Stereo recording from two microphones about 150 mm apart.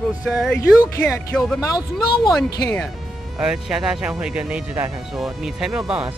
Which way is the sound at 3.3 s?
5° right (ahead or behind).